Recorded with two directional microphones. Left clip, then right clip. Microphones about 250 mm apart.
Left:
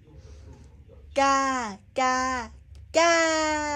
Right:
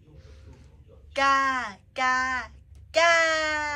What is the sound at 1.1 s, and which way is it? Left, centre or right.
A child's voice, left.